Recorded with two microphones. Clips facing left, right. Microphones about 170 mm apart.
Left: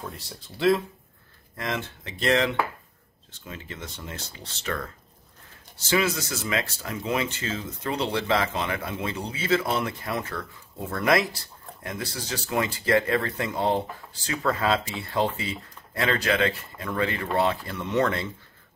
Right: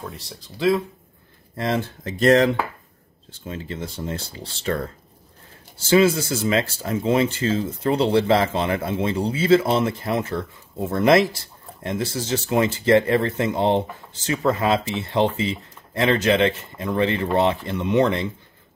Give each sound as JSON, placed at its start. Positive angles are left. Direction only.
{"t": 0.0, "sound": "speech", "side_deg": 0}
{"t": 1.6, "sound": "speech", "side_deg": -35}
{"t": 3.3, "sound": "speech", "side_deg": -30}